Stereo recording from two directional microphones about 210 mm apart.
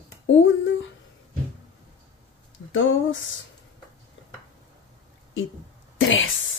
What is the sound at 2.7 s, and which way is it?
Speech, 65° left (ahead or behind).